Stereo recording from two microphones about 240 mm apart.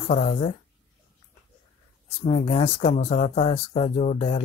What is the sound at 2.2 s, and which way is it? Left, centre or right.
Speech, left.